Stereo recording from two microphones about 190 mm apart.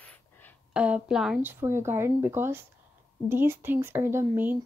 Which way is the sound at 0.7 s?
5° right (ahead or behind).